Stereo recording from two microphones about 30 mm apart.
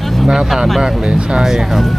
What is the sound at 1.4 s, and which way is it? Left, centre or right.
Speech, centre.